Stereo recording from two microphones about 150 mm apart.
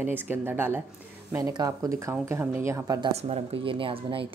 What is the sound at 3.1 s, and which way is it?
Speech, 45° right (ahead or behind).